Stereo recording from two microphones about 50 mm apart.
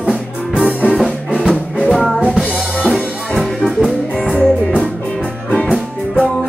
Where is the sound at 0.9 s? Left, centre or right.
Centre.